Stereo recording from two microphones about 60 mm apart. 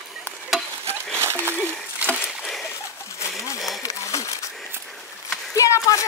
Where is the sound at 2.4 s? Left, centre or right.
Centre.